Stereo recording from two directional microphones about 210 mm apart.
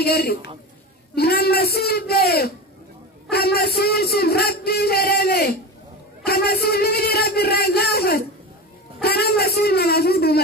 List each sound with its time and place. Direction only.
0.0 s music: 50° left (ahead or behind)